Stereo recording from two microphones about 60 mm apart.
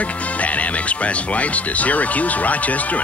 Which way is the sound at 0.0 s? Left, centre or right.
Left.